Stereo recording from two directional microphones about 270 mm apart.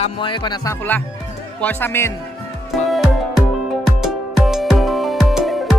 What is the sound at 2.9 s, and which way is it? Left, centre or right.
Music, centre.